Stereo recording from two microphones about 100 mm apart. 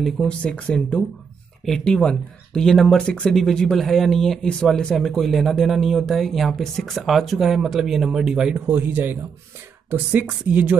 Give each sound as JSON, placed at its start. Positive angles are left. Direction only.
{"t": 0.4, "sound": "speech", "side_deg": 10}
{"t": 8.6, "sound": "a man's voice", "side_deg": -20}